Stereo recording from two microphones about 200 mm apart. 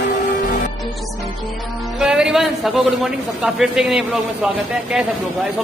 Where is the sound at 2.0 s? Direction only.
5° right (ahead or behind).